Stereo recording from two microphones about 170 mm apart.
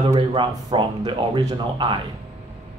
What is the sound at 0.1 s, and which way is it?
Speech, 30° right (ahead or behind).